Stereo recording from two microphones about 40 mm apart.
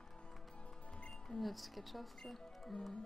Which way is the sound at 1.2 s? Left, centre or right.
Centre.